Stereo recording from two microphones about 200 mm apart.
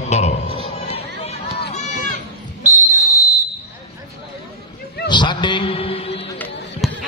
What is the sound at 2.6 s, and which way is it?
Basketball bounce, 40° right (ahead or behind).